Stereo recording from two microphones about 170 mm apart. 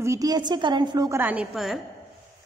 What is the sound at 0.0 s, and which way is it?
A woman's voice, 20° right (ahead or behind).